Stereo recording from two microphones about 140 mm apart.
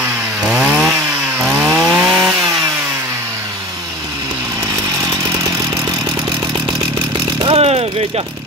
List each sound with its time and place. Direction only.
0.5 s chainsaw: 10° right (ahead or behind)
7.4 s vehicle: 45° right (ahead or behind)